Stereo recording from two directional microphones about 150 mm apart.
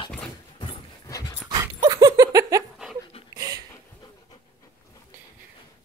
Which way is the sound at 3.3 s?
25° right (ahead or behind).